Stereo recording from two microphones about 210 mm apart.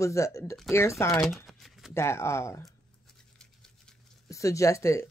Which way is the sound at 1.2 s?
Centre (ahead or behind).